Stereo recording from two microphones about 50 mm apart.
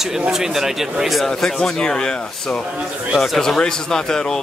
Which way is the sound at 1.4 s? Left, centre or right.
Centre.